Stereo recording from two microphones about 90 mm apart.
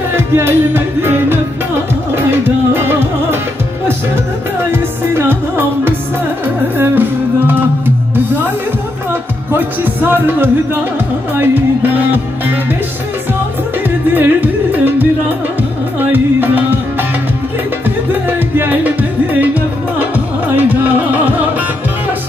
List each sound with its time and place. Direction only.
0.1 s music: 25° right (ahead or behind)
4.6 s music: 25° right (ahead or behind)
9.5 s music: 25° right (ahead or behind)
13.8 s music: 20° right (ahead or behind)
18.6 s music: 20° right (ahead or behind)